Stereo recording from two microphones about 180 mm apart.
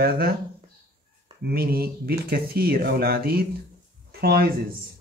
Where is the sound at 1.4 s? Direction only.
60° right (ahead or behind).